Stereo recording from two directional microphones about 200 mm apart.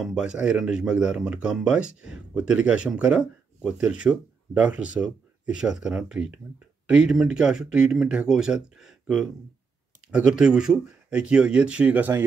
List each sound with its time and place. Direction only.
0.0 s speech: 5° right (ahead or behind)